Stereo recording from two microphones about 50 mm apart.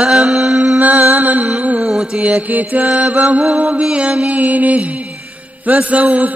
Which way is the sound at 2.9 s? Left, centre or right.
Right.